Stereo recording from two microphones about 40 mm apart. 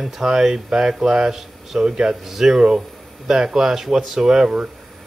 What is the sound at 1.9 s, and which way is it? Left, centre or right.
Speech, centre.